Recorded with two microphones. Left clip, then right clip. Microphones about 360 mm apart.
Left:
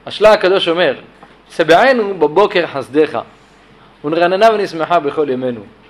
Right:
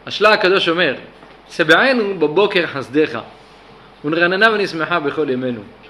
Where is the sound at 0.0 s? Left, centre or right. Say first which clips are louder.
Left 3 dB; centre.